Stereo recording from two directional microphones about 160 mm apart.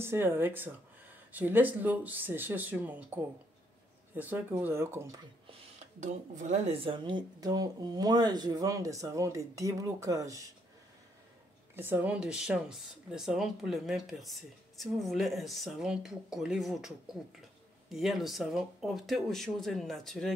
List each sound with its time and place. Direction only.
0.0 s speech: 15° right (ahead or behind)
4.2 s speech: 10° right (ahead or behind)
5.5 s speech: 45° right (ahead or behind)
6.8 s speech: 30° right (ahead or behind)
11.7 s speech: 10° right (ahead or behind)